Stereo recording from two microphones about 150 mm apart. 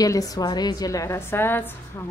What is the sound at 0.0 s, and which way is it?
A woman's voice, 25° left (ahead or behind).